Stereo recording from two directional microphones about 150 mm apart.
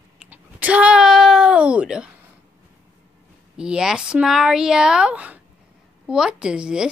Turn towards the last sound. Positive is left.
turn(degrees=-5)  # may be behind; listen again after turning